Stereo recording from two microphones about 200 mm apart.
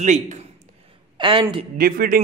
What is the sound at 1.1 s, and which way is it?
Speech, 25° right (ahead or behind).